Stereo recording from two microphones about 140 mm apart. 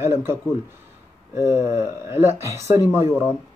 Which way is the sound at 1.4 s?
20° right (ahead or behind).